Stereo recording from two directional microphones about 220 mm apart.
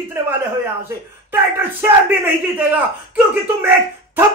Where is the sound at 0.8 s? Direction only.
10° right (ahead or behind).